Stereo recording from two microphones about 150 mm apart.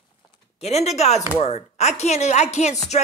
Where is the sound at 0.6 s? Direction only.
45° left (ahead or behind).